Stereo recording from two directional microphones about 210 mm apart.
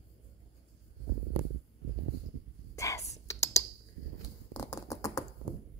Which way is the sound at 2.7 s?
15° left (ahead or behind).